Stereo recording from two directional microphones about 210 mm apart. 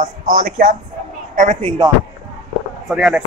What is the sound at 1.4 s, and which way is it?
Speech, 30° right (ahead or behind).